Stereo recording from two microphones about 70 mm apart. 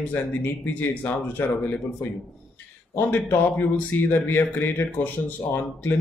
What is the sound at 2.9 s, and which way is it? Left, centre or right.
Speech, left.